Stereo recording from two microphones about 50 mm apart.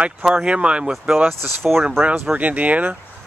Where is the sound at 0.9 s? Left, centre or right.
Centre.